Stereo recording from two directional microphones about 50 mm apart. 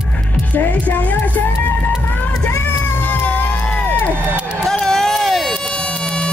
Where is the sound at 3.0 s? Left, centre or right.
Left.